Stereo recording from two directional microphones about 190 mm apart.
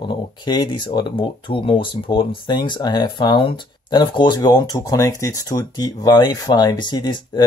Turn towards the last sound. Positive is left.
turn(degrees=20)  # may be behind; listen again after turning